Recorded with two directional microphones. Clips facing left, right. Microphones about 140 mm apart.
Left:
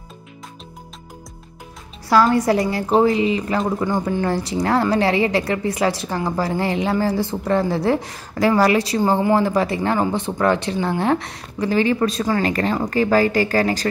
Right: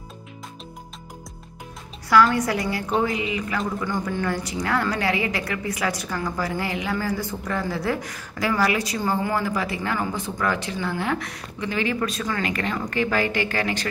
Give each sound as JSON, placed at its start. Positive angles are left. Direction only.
{"t": 2.0, "sound": "a woman's voice", "side_deg": 35}